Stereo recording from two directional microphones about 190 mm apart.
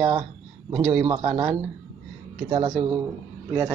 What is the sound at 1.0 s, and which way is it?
Speech, 30° right (ahead or behind).